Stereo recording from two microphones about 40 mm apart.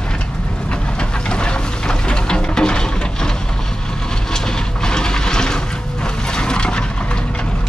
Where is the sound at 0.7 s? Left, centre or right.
Left.